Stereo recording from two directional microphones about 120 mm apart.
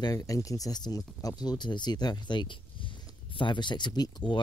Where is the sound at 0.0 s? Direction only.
30° left (ahead or behind).